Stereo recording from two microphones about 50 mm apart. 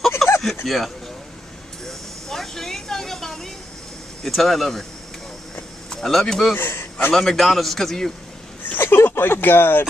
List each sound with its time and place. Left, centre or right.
0.2 s a sound: centre
0.7 s a man's voice: centre
1.9 s a sound: centre
4.2 s a man's voice: centre
5.9 s speech: centre
6.5 s a man's voice: left
7.2 s a man's voice: centre
8.7 s speech: left